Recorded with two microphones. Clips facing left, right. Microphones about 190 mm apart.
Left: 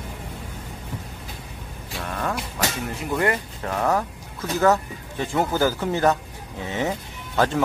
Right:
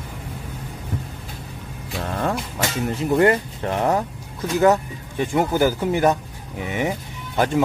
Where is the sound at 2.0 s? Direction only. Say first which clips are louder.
Right 4 dB; 30° right (ahead or behind).